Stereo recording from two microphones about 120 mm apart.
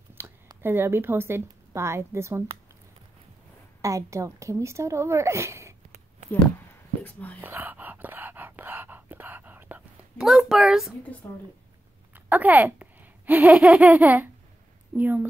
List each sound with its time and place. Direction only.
0.2 s a sound: 20° right (ahead or behind)
0.6 s a woman's voice: 20° right (ahead or behind)
3.8 s a woman's voice: 25° right (ahead or behind)
7.0 s speech: 15° left (ahead or behind)
7.4 s whispering: 15° right (ahead or behind)
11.2 s a woman's voice: 20° left (ahead or behind)
12.1 s a child's voice: 15° right (ahead or behind)